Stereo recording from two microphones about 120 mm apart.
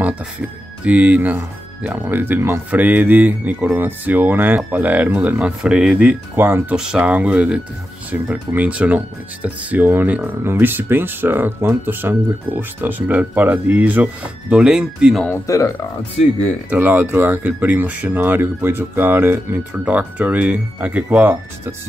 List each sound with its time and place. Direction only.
0.0 s speech: 10° right (ahead or behind)
15.2 s speech: 25° left (ahead or behind)
16.7 s speech: 15° right (ahead or behind)